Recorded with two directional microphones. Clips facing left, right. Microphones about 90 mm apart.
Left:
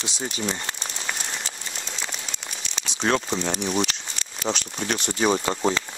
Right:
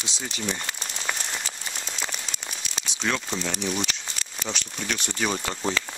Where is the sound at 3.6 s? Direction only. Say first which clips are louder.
Left 4 dB; 30° left (ahead or behind).